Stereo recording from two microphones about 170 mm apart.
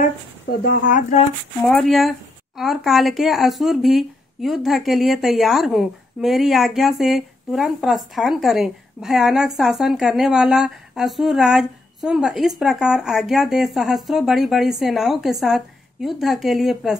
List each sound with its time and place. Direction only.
0.5 s speech: 65° left (ahead or behind)
1.7 s speech: centre (ahead or behind)